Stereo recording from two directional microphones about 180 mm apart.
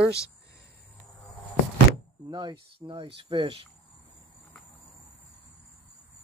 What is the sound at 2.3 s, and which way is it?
Speech, 25° right (ahead or behind).